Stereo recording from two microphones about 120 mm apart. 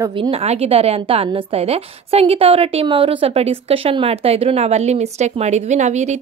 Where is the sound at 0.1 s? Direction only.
50° right (ahead or behind).